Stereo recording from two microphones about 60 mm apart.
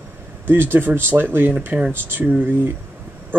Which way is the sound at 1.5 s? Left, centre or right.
Right.